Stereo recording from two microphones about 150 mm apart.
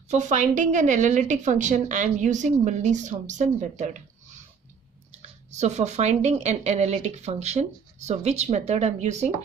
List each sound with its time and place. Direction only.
0.1 s a woman's voice: 55° right (ahead or behind)
5.2 s speech: 50° right (ahead or behind)